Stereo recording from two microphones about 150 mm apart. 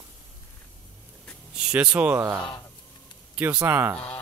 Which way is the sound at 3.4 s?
10° right (ahead or behind).